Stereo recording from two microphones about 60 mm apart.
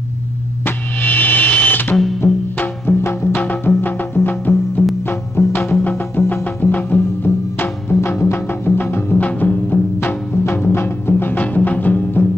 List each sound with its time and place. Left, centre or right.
0.7 s music: left
2.2 s music: centre
3.0 s music: left
3.4 s music: left
9.2 s music: left
9.9 s music: left